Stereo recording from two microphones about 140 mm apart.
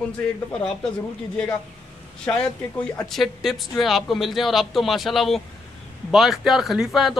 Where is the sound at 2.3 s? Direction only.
15° left (ahead or behind).